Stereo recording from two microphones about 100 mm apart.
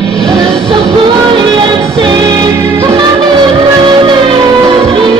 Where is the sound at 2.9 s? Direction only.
50° right (ahead or behind).